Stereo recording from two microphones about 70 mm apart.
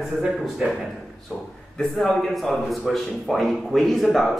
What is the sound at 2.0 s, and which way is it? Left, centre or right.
Speech, centre.